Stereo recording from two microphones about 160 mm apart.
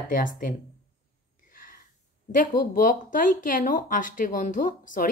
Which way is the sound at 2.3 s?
55° left (ahead or behind).